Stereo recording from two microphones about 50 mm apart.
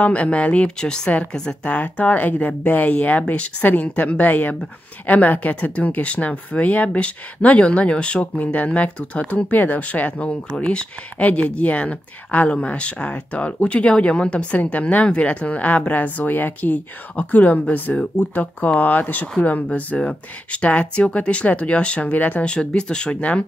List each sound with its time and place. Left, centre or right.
0.0 s speech: left
22.5 s speech: centre